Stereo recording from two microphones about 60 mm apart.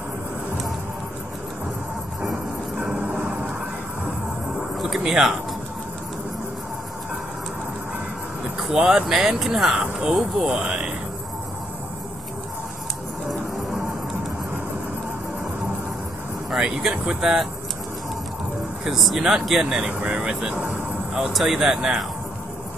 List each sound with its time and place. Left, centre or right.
3.1 s a sound: right
4.7 s speech: centre
8.7 s speech: centre
10.5 s speech: centre
13.3 s music: centre
16.6 s speech: centre
18.9 s speech: centre
19.9 s speech: right
21.2 s speech: centre